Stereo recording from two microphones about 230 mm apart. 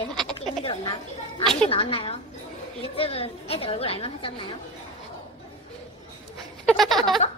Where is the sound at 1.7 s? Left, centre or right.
Left.